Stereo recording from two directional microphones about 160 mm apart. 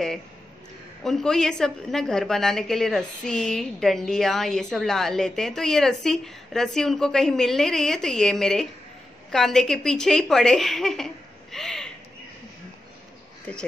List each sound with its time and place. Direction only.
1.0 s a woman's voice: centre (ahead or behind)
11.5 s a sound: 5° left (ahead or behind)
13.5 s speech: 10° left (ahead or behind)